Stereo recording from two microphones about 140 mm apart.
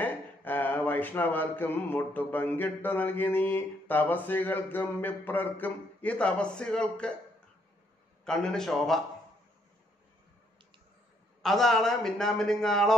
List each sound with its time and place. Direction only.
0.0 s a sound: 15° left (ahead or behind)
8.3 s a man's voice: 5° left (ahead or behind)
11.4 s a man's voice: centre (ahead or behind)